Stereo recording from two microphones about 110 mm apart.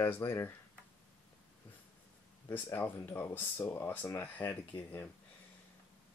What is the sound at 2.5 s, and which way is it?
Speech, 15° left (ahead or behind).